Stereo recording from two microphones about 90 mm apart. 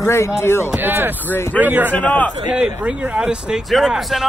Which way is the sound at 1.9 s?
15° left (ahead or behind).